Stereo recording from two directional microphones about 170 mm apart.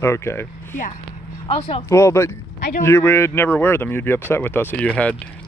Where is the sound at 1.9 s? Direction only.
15° left (ahead or behind).